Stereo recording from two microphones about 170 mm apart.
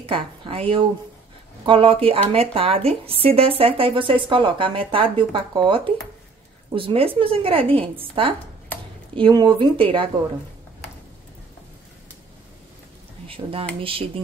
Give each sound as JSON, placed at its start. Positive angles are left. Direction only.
{"t": 0.0, "sound": "speech", "side_deg": -35}
{"t": 13.3, "sound": "speech", "side_deg": -35}